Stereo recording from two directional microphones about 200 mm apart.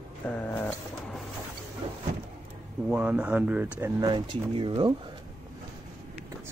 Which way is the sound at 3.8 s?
20° right (ahead or behind).